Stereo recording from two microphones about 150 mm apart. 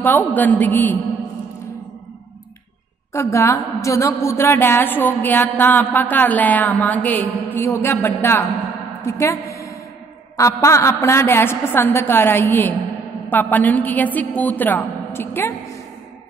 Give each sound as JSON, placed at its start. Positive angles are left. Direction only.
{"t": 0.0, "sound": "a woman's voice", "side_deg": 10}
{"t": 3.1, "sound": "a woman's voice", "side_deg": 20}